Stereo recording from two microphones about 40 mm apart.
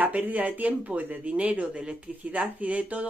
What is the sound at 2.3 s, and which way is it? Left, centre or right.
Speech, right.